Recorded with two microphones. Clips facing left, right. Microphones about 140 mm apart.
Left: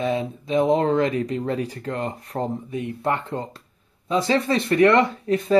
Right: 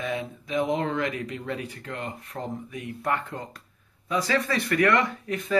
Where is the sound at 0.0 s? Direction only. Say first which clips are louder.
Left 7 dB; 30° left (ahead or behind).